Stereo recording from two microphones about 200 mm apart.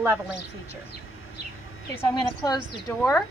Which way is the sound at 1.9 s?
20° left (ahead or behind).